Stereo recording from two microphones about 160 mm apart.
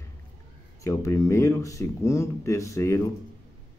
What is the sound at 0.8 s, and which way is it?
A man's voice, 20° left (ahead or behind).